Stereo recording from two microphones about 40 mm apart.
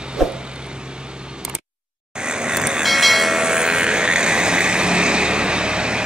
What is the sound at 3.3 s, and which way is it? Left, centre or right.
Vehicle, centre.